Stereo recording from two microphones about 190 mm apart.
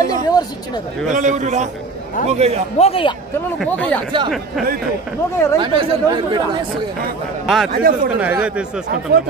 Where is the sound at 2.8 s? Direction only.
30° left (ahead or behind).